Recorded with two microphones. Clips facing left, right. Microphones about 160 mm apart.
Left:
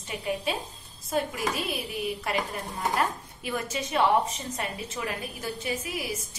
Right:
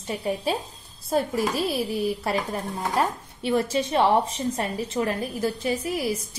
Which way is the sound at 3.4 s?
30° right (ahead or behind).